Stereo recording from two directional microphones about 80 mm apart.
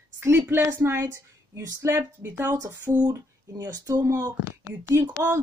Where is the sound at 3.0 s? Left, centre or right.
Right.